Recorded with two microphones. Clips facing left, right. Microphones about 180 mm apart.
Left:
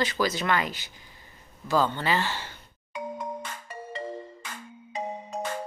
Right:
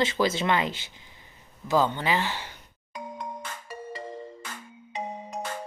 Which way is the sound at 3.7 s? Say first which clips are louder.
Left 1 dB; 10° right (ahead or behind).